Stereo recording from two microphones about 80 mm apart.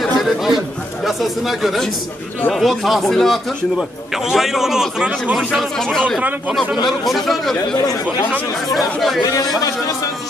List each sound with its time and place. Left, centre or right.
0.0 s chatter: centre
1.0 s speech: centre
5.6 s speech: centre
8.7 s speech: centre
9.6 s a man's voice: left